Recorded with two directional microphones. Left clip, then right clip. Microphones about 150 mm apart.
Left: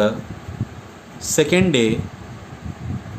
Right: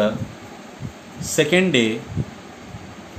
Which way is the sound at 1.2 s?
75° left (ahead or behind).